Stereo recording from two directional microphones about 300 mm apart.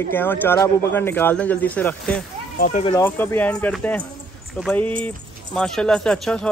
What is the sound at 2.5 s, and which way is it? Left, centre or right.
Speech, left.